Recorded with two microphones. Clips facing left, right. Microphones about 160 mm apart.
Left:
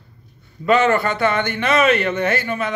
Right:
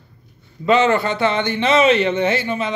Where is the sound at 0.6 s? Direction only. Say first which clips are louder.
Right 1 dB; 20° right (ahead or behind).